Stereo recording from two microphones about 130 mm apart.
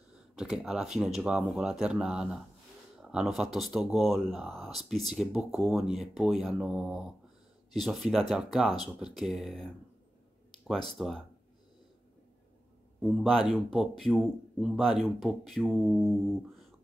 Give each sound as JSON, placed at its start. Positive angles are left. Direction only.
{"t": 0.1, "sound": "speech", "side_deg": -5}
{"t": 11.0, "sound": "speech", "side_deg": 0}
{"t": 13.0, "sound": "speech", "side_deg": 0}